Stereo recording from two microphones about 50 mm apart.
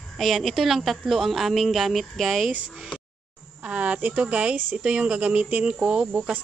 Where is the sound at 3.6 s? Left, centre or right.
Right.